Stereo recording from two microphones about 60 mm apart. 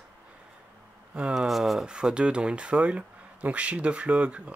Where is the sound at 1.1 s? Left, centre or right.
Centre.